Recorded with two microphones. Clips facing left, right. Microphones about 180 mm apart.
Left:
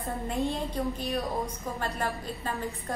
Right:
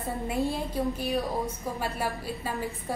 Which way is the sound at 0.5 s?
10° right (ahead or behind).